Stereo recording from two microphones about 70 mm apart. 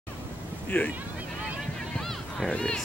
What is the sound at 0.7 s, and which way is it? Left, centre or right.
Speech, left.